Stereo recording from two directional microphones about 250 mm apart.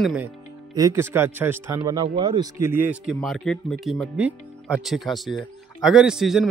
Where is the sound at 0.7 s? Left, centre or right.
Centre.